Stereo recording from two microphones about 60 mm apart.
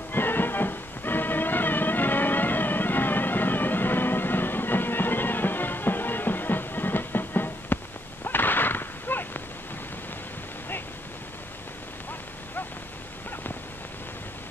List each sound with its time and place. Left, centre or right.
0.1 s music: left